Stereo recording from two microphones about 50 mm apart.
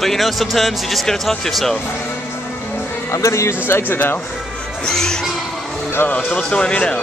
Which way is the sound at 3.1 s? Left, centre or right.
Left.